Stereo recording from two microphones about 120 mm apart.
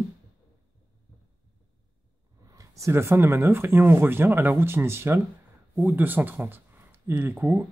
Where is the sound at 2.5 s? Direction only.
25° right (ahead or behind).